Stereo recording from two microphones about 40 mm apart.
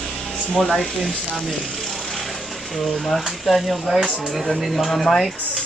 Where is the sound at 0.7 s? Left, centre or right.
Centre.